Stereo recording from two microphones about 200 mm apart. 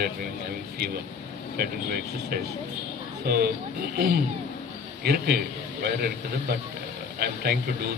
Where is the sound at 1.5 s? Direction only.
50° right (ahead or behind).